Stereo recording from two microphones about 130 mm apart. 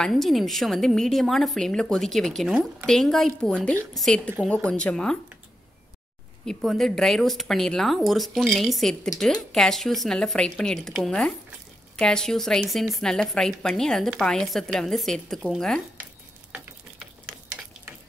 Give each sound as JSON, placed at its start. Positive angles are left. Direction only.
{"t": 0.0, "sound": "a woman's voice", "side_deg": 0}
{"t": 6.4, "sound": "a woman's voice", "side_deg": 5}